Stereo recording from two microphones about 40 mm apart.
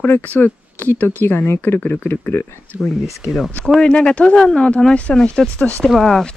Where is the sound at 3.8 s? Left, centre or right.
Left.